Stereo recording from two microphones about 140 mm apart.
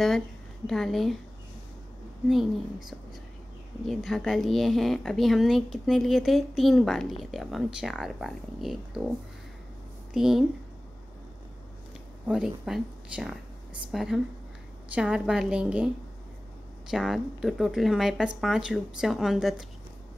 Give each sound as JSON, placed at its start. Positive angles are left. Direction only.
{"t": 0.7, "sound": "speech", "side_deg": 0}
{"t": 2.2, "sound": "speech", "side_deg": 0}
{"t": 10.1, "sound": "speech", "side_deg": -5}
{"t": 12.3, "sound": "speech", "side_deg": -5}
{"t": 16.9, "sound": "speech", "side_deg": 0}